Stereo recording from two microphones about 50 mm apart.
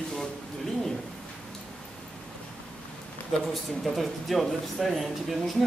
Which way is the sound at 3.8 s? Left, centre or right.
Centre.